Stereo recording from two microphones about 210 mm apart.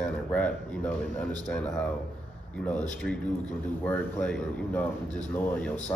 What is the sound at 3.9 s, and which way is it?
Speech, 5° left (ahead or behind).